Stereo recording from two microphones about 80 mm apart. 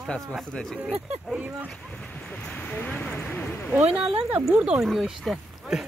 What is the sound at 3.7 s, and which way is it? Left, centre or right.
Speech, centre.